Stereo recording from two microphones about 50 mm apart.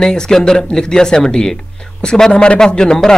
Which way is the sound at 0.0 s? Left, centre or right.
Centre.